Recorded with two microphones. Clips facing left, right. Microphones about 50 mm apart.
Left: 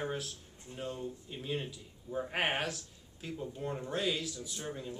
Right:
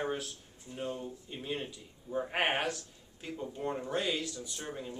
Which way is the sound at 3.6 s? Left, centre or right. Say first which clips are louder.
Right 4 dB; centre.